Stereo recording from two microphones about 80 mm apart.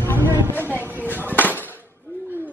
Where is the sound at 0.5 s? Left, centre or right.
Left.